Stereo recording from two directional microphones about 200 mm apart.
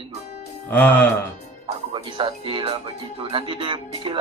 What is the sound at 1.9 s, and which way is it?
Speech, 25° right (ahead or behind).